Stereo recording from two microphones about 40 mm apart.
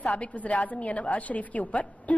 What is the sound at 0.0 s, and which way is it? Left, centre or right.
A woman's voice, left.